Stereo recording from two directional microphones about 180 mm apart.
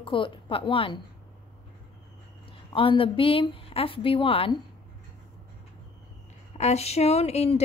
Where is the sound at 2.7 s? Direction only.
30° left (ahead or behind).